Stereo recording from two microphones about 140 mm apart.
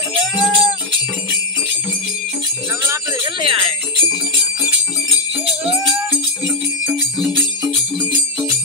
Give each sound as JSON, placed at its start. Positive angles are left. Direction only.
{"t": 0.1, "sound": "music", "side_deg": -40}
{"t": 3.3, "sound": "jingle bell", "side_deg": -40}